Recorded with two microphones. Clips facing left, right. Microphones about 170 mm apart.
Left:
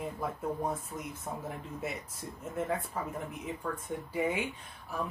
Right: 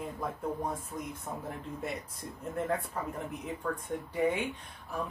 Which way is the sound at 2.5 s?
5° left (ahead or behind).